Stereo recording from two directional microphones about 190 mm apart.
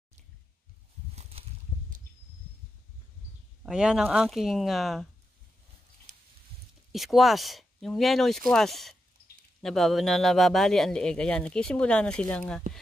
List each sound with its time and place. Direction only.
1.1 s a sound: 30° right (ahead or behind)
3.6 s a man's voice: 5° right (ahead or behind)
6.9 s a man's voice: centre (ahead or behind)